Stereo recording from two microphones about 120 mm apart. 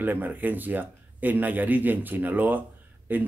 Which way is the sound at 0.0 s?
15° right (ahead or behind).